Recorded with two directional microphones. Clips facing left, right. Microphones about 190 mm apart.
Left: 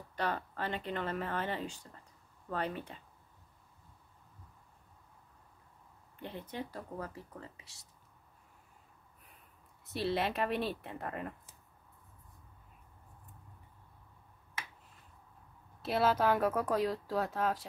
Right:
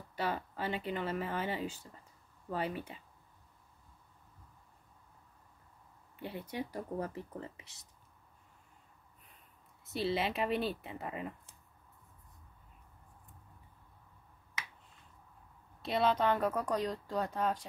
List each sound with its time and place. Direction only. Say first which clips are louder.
0.1 s speech: even; 5° right (ahead or behind)
6.2 s speech: right 2 dB; 10° right (ahead or behind)
9.8 s speech: even; centre (ahead or behind)
15.8 s speech: left 1 dB; 5° left (ahead or behind)